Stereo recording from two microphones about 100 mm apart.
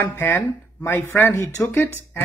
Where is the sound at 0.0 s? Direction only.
25° left (ahead or behind).